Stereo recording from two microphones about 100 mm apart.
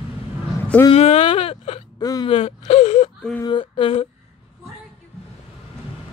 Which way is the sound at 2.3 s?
80° left.